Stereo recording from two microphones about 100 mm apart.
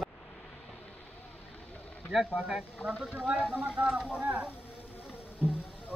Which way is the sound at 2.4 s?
10° right (ahead or behind).